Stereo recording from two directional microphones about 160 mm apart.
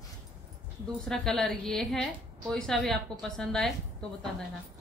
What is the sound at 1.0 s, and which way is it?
A woman's voice, 5° left (ahead or behind).